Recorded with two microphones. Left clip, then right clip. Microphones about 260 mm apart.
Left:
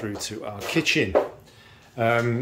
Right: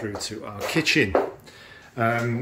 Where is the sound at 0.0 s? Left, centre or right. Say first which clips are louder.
Even; centre.